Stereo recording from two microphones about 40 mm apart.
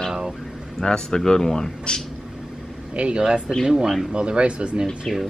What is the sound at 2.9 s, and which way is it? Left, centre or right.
Speech, right.